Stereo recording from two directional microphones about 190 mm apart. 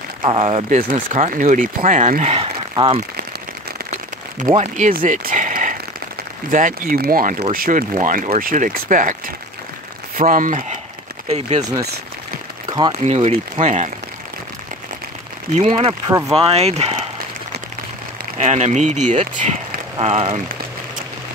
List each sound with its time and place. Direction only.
0.2 s speech: 30° right (ahead or behind)
2.7 s speech: 25° right (ahead or behind)
4.6 s speech: 40° right (ahead or behind)
10.1 s speech: 45° right (ahead or behind)
11.2 s speech: 35° right (ahead or behind)
12.9 s speech: 35° right (ahead or behind)
15.5 s speech: 30° right (ahead or behind)
15.9 s speech: 20° right (ahead or behind)
16.3 s speech: 30° right (ahead or behind)
18.4 s speech: 35° right (ahead or behind)